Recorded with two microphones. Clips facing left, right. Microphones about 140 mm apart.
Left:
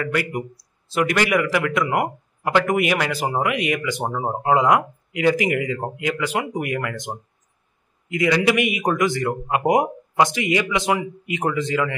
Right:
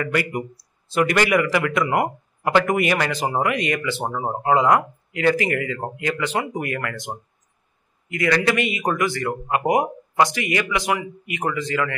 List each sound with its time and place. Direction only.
0.0 s speech: centre (ahead or behind); by 11.9 s 20° left (ahead or behind)